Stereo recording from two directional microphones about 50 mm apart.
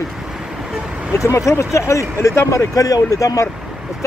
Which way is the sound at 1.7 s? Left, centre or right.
Left.